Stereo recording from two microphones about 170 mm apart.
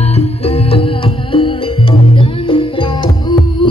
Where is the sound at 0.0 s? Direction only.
35° left (ahead or behind).